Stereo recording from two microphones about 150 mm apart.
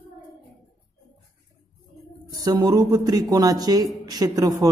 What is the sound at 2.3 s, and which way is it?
Speech, 25° right (ahead or behind).